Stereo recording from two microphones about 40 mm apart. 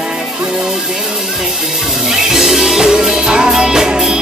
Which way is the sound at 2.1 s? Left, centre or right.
Centre.